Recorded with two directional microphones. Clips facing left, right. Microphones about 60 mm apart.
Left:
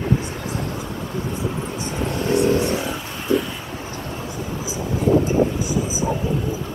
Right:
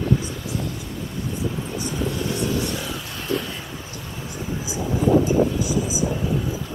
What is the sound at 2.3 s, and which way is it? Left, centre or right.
Vehicle, left.